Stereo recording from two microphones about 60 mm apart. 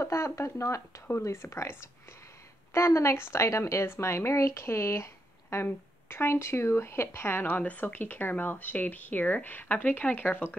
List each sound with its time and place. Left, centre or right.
0.0 s speech: left
1.0 s a woman's voice: left